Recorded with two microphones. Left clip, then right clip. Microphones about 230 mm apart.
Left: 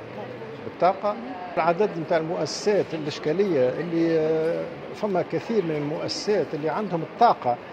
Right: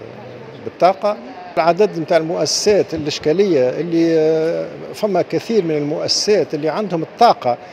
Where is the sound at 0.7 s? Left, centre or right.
Right.